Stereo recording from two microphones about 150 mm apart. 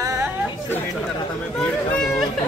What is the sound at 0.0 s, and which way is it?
Chatter, 20° right (ahead or behind).